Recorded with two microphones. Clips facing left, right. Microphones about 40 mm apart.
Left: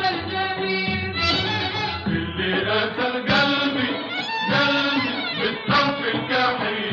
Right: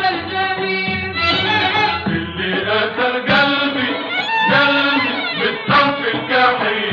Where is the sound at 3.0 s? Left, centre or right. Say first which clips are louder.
Right 6 dB; right.